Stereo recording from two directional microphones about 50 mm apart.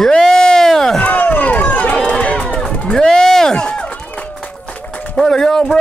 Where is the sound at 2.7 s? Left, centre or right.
Centre.